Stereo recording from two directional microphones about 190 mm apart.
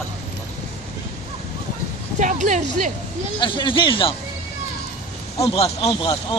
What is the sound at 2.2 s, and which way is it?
Speech, 40° right (ahead or behind).